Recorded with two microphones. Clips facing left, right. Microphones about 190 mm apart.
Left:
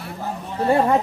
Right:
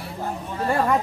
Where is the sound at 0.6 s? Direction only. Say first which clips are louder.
Left 4 dB; 25° left (ahead or behind).